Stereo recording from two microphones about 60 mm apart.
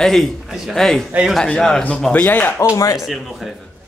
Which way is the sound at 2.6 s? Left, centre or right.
Left.